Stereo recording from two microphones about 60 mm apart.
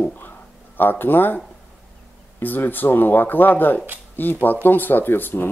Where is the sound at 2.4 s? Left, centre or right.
Left.